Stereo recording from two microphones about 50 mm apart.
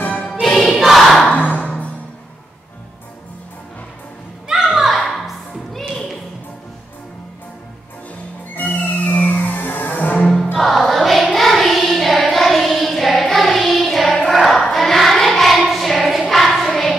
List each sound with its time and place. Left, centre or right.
0.2 s music: centre
1.3 s music: left
4.6 s music: centre
8.5 s music: left
10.3 s music: centre
14.3 s choir: centre